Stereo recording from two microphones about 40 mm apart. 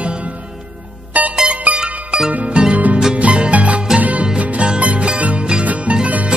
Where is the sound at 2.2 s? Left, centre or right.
Centre.